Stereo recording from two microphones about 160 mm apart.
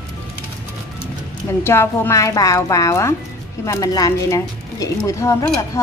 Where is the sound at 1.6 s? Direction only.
15° left (ahead or behind).